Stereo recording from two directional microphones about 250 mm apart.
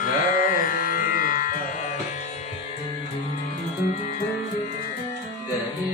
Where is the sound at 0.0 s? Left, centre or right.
Left.